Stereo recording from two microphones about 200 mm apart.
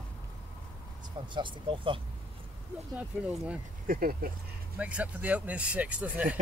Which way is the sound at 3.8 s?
45° right (ahead or behind).